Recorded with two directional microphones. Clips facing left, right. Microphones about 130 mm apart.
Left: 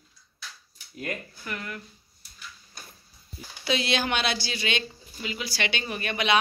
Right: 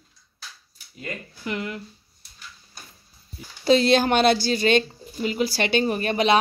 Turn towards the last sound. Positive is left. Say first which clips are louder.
# right 6 dB
turn(degrees=-35)  # may be behind; listen again after turning